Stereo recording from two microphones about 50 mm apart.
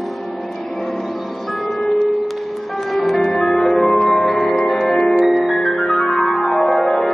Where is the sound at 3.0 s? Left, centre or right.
Centre.